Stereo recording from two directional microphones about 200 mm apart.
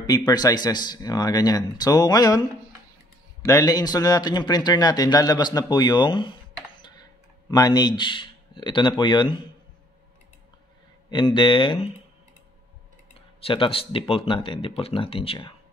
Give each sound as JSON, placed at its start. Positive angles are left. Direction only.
{"t": 0.0, "sound": "a man's voice", "side_deg": 20}
{"t": 3.4, "sound": "a man's voice", "side_deg": 15}
{"t": 7.5, "sound": "a man's voice", "side_deg": 20}
{"t": 11.1, "sound": "a man's voice", "side_deg": 25}
{"t": 13.4, "sound": "a man's voice", "side_deg": 25}